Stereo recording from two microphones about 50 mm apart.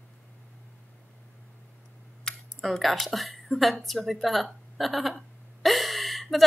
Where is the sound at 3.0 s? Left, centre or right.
Centre.